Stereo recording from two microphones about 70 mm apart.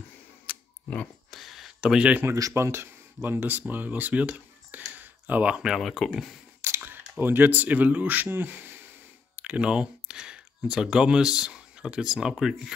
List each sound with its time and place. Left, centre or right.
0.5 s camera: centre
1.3 s a sound: centre
1.8 s speech: centre
2.5 s speech: right
4.9 s a sound: right
5.6 s speech: centre
6.8 s speech: right
9.4 s speech: centre